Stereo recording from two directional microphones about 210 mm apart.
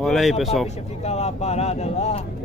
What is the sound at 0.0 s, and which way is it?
Speech, centre (ahead or behind).